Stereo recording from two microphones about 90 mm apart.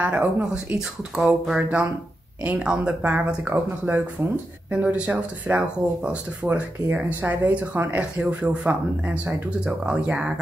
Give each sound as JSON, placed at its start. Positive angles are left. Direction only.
{"t": 0.0, "sound": "speech", "side_deg": -15}
{"t": 0.7, "sound": "speech", "side_deg": -5}